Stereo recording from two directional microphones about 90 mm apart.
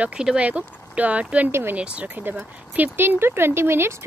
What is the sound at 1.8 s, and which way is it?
Speech, 15° right (ahead or behind).